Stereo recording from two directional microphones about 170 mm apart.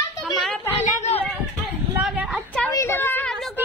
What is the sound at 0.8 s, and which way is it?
Chatter, 40° left (ahead or behind).